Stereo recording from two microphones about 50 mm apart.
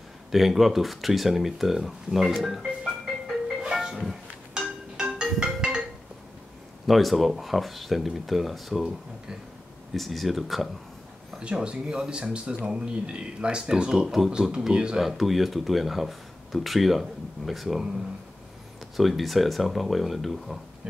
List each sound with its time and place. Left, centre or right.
0.3 s speech: centre
3.7 s music: centre
4.9 s marimba: centre
6.9 s speech: centre
9.9 s speech: centre
11.3 s speech: right
14.0 s speech: centre
15.0 s speech: centre
18.9 s speech: centre